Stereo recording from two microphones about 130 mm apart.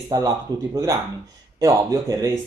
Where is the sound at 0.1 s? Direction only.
25° right (ahead or behind).